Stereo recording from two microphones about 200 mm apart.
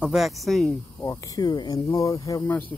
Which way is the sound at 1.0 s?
15° left (ahead or behind).